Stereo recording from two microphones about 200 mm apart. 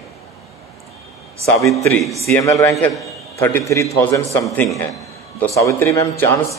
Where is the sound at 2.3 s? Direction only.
15° left (ahead or behind).